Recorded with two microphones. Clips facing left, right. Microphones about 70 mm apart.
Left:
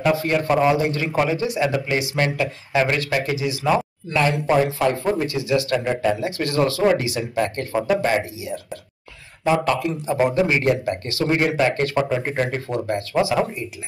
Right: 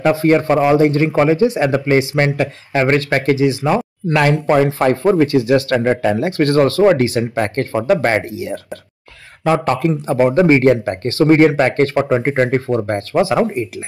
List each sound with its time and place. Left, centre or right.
0.0 s speech: right
4.1 s speech: right